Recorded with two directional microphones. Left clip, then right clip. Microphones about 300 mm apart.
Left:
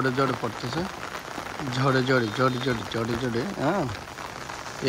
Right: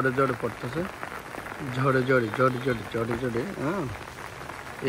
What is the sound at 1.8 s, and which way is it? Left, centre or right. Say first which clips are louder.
Speech: even; centre.